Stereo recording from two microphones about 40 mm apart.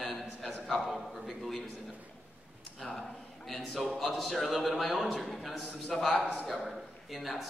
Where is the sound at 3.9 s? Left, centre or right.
Centre.